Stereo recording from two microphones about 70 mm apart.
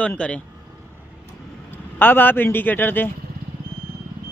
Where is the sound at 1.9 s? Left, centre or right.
Left.